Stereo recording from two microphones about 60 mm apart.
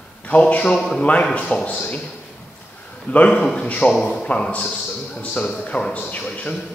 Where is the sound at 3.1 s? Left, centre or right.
Left.